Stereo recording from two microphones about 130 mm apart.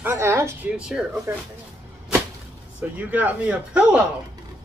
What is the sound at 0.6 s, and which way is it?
Speech, 10° right (ahead or behind).